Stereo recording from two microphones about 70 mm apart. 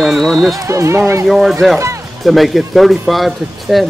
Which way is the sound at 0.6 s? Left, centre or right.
Right.